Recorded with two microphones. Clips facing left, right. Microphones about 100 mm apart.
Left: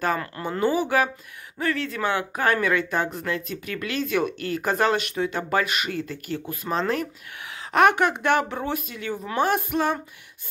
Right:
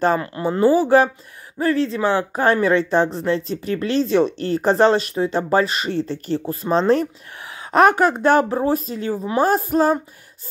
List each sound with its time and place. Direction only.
0.0 s speech: 25° right (ahead or behind)